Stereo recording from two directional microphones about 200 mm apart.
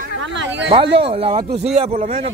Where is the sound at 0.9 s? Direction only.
30° right (ahead or behind).